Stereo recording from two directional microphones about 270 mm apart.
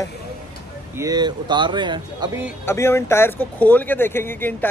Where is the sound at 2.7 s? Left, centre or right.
Centre.